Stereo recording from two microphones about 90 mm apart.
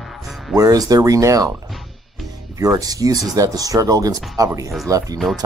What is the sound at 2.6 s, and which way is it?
Speech, 45° right (ahead or behind).